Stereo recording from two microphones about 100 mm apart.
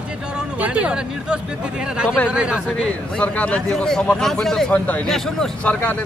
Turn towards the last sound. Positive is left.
turn(degrees=15)  # may be behind; listen again after turning